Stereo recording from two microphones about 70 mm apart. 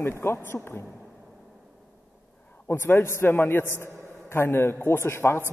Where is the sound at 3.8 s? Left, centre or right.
Left.